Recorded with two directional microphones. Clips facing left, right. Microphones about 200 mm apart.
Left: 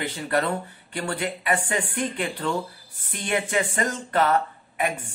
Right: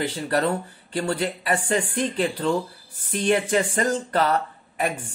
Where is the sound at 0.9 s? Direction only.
30° right (ahead or behind).